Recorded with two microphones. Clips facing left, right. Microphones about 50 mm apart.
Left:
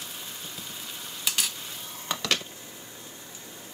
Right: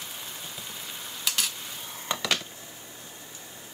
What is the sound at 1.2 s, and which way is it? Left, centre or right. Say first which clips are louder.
Stir: even; centre.